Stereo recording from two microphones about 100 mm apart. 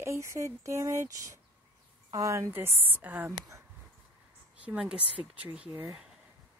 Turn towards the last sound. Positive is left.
turn(degrees=-20)  # may be behind; listen again after turning